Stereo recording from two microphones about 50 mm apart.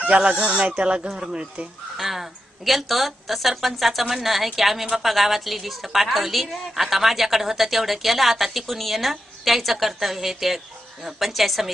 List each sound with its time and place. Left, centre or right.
0.1 s speech: centre
2.0 s a woman's voice: centre